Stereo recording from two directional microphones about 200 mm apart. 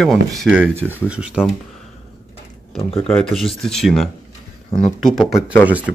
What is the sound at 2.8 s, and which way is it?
Speech, 30° left (ahead or behind).